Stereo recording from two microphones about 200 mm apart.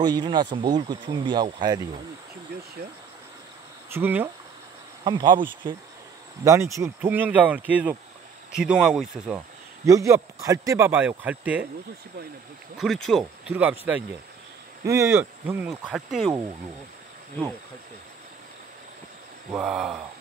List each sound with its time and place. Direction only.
0.0 s speech: 20° right (ahead or behind)
3.9 s speech: 10° right (ahead or behind)
5.0 s speech: 20° right (ahead or behind); by 9.4 s 5° right (ahead or behind)
9.8 s speech: 15° right (ahead or behind)
12.7 s speech: centre (ahead or behind)
19.5 s speech: 5° right (ahead or behind)